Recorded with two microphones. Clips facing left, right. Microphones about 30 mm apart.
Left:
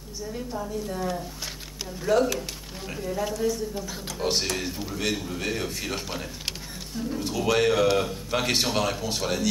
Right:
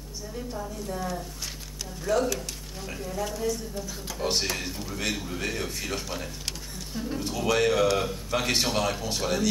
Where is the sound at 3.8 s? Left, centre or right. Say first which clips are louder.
Left 2 dB; centre.